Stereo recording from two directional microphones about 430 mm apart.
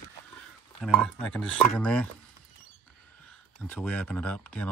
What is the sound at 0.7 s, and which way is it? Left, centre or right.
Speech, centre.